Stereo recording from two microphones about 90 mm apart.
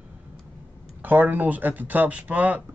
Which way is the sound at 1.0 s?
20° right (ahead or behind).